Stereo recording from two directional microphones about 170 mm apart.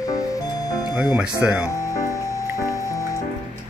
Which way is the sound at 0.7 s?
25° left (ahead or behind).